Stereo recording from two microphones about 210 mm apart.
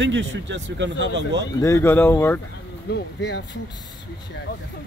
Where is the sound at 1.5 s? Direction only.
15° left (ahead or behind).